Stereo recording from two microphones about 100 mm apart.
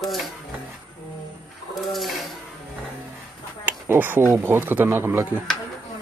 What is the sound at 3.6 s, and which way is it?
Speech, 20° right (ahead or behind).